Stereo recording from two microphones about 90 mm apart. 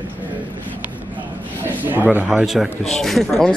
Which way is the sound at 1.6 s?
20° right (ahead or behind).